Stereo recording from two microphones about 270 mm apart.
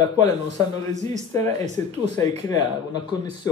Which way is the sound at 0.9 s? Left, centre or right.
Right.